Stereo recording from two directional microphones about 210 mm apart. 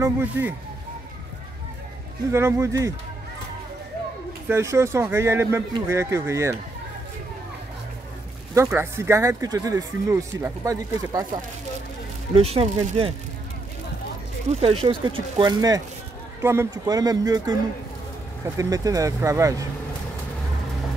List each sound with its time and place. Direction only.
0.0 s speech: 10° right (ahead or behind)
2.3 s speech: 15° right (ahead or behind)
4.5 s speech: 15° right (ahead or behind)
8.5 s speech: 10° right (ahead or behind)
12.4 s speech: 30° right (ahead or behind)
14.5 s speech: 30° right (ahead or behind)
18.6 s speech: 15° right (ahead or behind)